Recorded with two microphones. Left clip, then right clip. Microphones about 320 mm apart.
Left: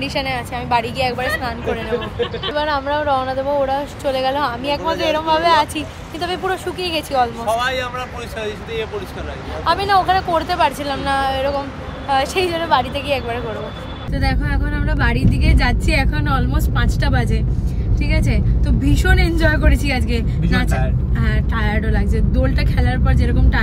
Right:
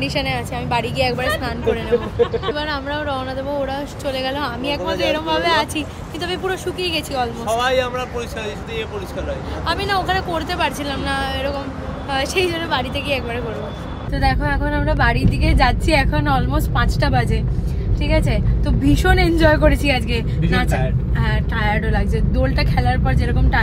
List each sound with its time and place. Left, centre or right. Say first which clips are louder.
0.0 s speech: even; centre
9.7 s speech: left 5 dB; centre